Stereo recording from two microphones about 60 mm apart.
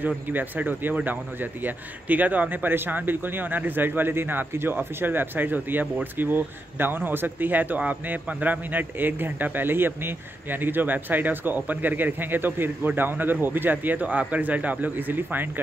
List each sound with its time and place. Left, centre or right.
0.0 s speech: right